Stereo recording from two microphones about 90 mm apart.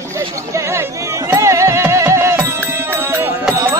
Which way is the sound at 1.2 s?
35° right (ahead or behind).